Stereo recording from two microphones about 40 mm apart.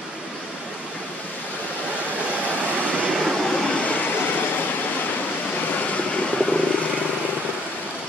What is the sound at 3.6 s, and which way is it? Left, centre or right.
Train, left.